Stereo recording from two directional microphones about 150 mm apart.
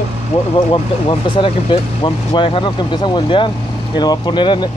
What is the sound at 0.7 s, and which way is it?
Speech, 35° left (ahead or behind).